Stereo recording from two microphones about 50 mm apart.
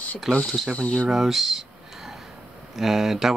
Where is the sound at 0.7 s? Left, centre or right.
Left.